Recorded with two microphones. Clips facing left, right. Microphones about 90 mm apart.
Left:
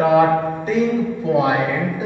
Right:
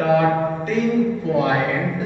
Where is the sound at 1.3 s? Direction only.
15° left (ahead or behind).